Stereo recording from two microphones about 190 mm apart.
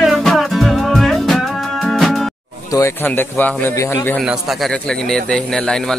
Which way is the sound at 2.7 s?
15° left (ahead or behind).